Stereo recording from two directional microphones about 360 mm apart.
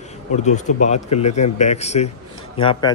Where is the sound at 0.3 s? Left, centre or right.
Centre.